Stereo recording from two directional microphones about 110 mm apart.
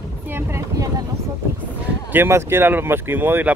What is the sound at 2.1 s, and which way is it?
Speech, 20° right (ahead or behind).